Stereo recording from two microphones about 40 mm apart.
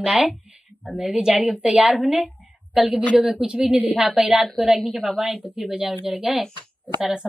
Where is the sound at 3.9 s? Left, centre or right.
Centre.